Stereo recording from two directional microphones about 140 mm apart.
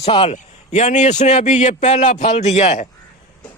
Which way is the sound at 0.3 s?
55° left (ahead or behind).